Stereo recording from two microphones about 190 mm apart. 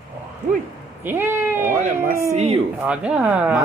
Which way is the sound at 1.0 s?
10° right (ahead or behind).